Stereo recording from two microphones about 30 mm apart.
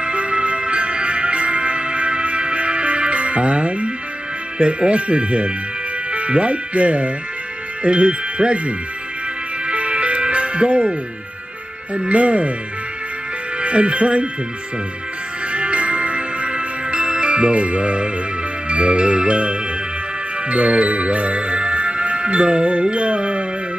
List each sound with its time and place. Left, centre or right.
0.0 s music: right
4.6 s speech: right
9.7 s music: right
12.1 s speech: right
13.6 s speech: right
15.5 s music: right
18.7 s jingle bell: right
20.4 s music: right